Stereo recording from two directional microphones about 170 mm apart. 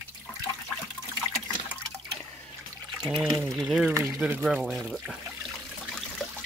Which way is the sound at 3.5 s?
5° right (ahead or behind).